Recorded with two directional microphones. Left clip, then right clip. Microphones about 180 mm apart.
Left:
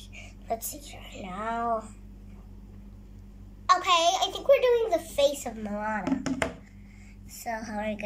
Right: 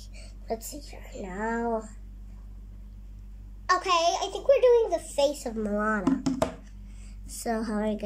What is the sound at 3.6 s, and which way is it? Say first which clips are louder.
A child's voice: left 2 dB; 25° right (ahead or behind).